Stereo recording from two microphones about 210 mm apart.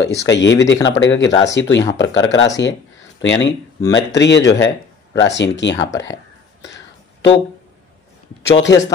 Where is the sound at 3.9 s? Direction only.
55° left (ahead or behind).